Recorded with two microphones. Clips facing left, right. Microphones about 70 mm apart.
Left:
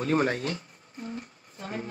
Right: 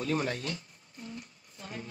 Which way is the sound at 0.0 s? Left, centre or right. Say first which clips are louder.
Left 6 dB; left.